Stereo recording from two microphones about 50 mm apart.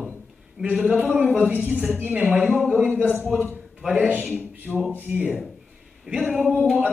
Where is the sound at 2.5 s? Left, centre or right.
Centre.